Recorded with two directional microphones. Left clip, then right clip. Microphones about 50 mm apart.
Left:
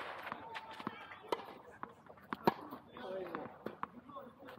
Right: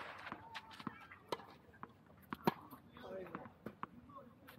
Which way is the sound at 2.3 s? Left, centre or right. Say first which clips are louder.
Left 5 dB; right.